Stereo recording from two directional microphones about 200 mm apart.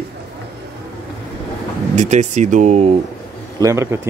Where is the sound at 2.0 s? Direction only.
35° right (ahead or behind).